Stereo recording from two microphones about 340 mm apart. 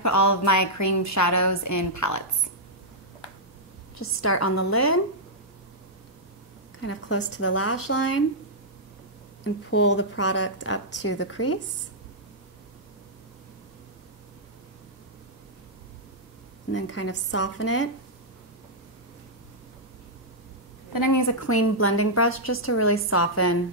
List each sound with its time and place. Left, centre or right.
0.0 s a woman's voice: left
4.0 s a woman's voice: left
6.8 s speech: left
9.4 s speech: left
16.7 s speech: left
20.9 s a woman's voice: left